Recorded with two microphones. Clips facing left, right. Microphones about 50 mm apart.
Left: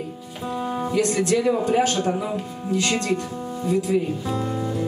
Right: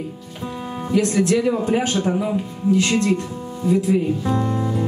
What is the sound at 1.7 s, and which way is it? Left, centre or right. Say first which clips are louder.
Speech: even; centre.